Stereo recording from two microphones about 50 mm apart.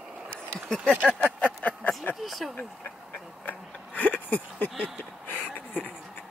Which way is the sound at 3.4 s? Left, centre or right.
Left.